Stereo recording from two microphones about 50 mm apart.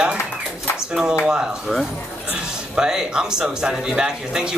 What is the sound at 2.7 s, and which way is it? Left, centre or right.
Speech, centre.